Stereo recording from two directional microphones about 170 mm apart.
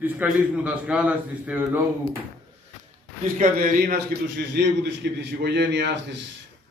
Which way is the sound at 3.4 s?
55° right (ahead or behind).